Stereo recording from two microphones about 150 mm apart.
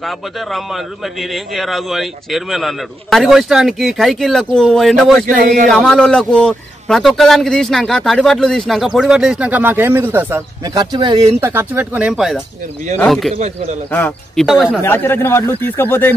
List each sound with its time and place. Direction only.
0.0 s a man's voice: centre (ahead or behind)
5.2 s speech: 65° right (ahead or behind)
5.7 s a man's voice: 5° left (ahead or behind); by 10.4 s 15° right (ahead or behind)
10.6 s speech: 25° right (ahead or behind)
11.4 s speech: 10° right (ahead or behind)
14.3 s a man's voice: centre (ahead or behind)
14.8 s speech: 15° left (ahead or behind)